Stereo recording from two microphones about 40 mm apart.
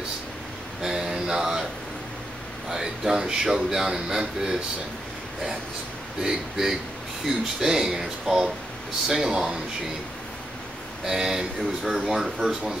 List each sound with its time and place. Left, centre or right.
0.8 s a sound: centre
2.7 s speech: centre
6.2 s speech: centre
11.1 s speech: centre